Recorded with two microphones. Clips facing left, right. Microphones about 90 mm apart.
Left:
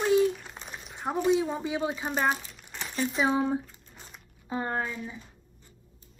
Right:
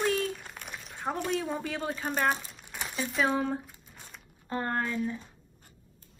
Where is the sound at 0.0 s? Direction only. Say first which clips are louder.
Left 6 dB; 15° left (ahead or behind).